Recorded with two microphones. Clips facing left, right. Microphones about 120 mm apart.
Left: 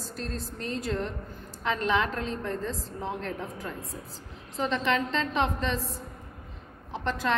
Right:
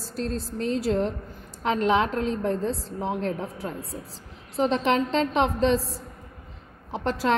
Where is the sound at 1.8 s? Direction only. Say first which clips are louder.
Right 5 dB; 30° right (ahead or behind).